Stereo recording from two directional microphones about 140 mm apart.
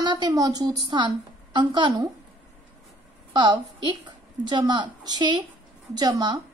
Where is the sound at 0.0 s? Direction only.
30° right (ahead or behind).